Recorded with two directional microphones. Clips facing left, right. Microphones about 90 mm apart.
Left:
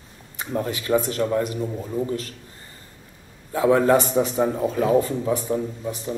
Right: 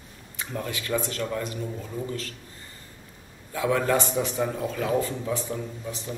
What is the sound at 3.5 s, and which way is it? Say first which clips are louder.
A man's voice: left 7 dB; 30° left (ahead or behind).